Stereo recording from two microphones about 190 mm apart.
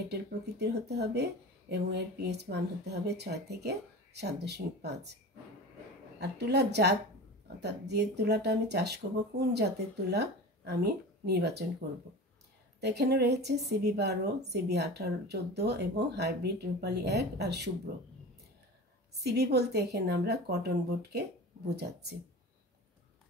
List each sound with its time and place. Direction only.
0.1 s speech: 60° right (ahead or behind)
6.1 s speech: 60° right (ahead or behind)
12.8 s speech: 60° right (ahead or behind)
19.2 s speech: 60° right (ahead or behind)